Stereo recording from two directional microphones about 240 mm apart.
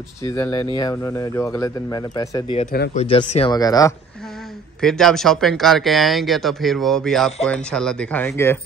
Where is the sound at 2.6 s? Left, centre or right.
Left.